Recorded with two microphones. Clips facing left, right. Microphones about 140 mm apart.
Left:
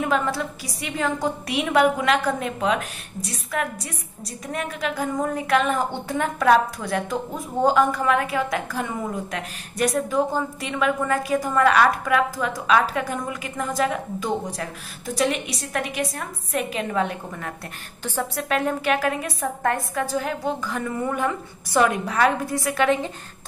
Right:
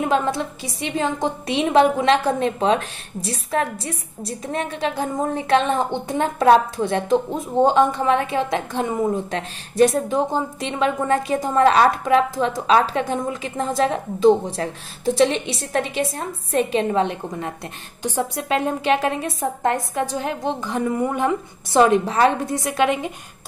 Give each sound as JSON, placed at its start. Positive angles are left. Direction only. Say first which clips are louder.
{"t": 0.0, "sound": "a woman's voice", "louder": "right 3 dB", "side_deg": -20}